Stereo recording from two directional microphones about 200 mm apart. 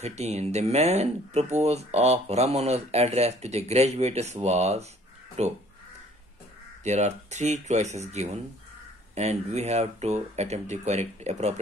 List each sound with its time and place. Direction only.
0.0 s speech: 35° right (ahead or behind)
6.8 s speech: 35° right (ahead or behind)